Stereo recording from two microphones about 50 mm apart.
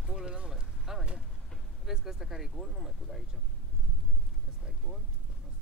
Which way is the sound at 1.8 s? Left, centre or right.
Centre.